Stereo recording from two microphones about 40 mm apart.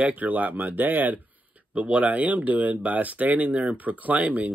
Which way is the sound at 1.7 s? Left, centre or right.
Right.